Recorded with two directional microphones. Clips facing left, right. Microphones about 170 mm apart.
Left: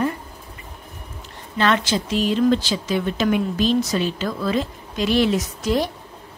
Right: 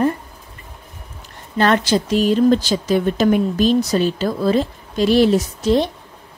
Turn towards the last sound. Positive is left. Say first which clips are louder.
# right 5 dB
turn(degrees=-25)  # may be behind; listen again after turning